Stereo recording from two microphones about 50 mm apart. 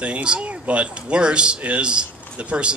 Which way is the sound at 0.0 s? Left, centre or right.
Right.